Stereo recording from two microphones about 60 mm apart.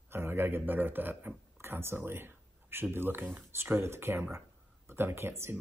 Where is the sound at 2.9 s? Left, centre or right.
Right.